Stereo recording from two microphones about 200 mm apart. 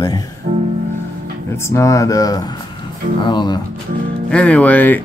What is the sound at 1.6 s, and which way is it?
Speech, 15° left (ahead or behind).